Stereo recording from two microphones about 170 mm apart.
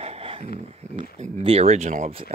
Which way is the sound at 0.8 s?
40° right (ahead or behind).